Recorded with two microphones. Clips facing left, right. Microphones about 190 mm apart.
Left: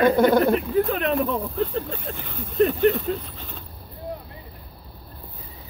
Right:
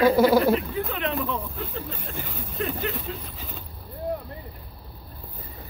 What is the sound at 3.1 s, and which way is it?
Speech, 45° left (ahead or behind).